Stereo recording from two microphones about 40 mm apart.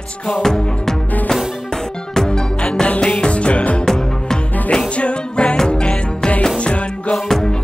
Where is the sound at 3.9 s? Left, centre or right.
Centre.